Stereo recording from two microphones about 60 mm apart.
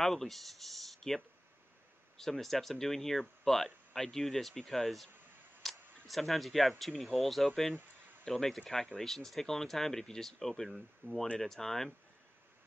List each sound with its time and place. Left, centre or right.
0.0 s speech: centre
5.6 s a sound: centre
6.8 s speech: centre
11.0 s speech: right
11.3 s speech: centre